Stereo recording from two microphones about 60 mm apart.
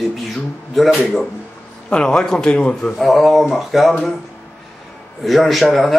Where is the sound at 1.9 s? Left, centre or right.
Centre.